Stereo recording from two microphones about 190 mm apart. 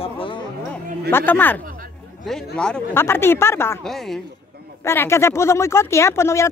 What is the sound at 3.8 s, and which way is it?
Speech, centre (ahead or behind).